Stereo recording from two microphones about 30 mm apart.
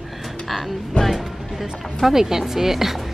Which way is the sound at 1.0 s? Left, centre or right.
Left.